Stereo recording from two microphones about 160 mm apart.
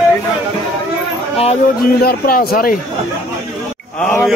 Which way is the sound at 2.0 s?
75° left (ahead or behind).